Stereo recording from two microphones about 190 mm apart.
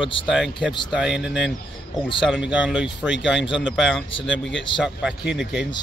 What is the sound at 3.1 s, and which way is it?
Speech, 70° left (ahead or behind).